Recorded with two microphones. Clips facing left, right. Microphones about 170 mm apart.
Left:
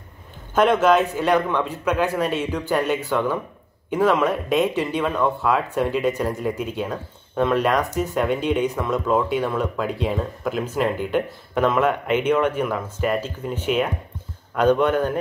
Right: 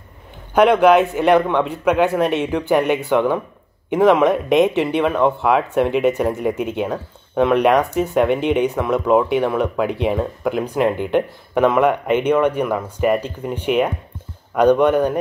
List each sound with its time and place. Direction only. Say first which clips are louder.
0.6 s a man's voice: right 4 dB; 15° right (ahead or behind)